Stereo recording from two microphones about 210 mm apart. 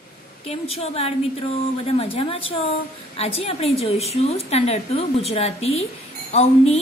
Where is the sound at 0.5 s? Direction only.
30° left (ahead or behind).